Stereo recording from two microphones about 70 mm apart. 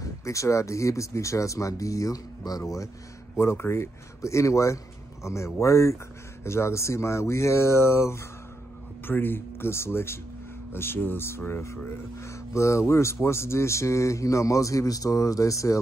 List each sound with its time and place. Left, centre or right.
0.0 s speech: left
3.3 s speech: left